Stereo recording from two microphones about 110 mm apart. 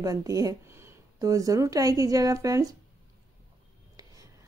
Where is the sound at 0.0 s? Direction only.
30° right (ahead or behind).